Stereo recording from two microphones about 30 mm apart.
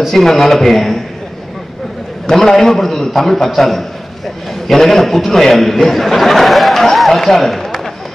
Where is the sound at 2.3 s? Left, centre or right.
Centre.